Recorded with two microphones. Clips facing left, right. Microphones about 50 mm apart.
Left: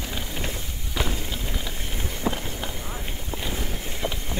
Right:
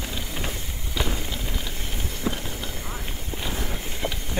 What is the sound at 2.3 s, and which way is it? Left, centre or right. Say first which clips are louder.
Run: left 1 dB; left.